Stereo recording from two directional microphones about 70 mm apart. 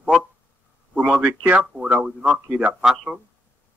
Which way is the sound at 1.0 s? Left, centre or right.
Centre.